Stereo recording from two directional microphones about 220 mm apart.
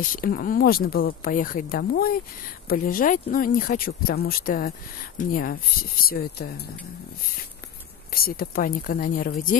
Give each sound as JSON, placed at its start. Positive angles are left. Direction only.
{"t": 0.0, "sound": "speech", "side_deg": 40}
{"t": 8.1, "sound": "speech", "side_deg": 40}